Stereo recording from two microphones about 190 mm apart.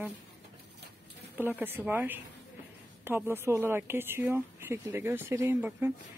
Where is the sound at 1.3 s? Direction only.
10° right (ahead or behind).